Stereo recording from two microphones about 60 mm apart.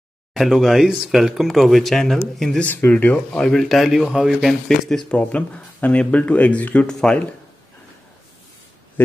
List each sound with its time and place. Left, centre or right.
0.3 s speech: centre
2.6 s speech: left
3.3 s speech: centre
5.1 s speech: centre
6.9 s speech: centre